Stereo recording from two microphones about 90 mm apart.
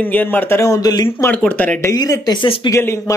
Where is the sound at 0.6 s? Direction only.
40° left (ahead or behind).